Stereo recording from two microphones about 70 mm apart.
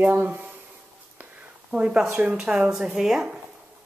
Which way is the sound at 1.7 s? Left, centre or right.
Centre.